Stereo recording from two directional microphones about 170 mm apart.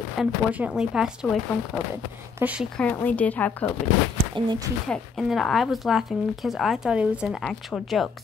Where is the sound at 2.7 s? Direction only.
10° left (ahead or behind).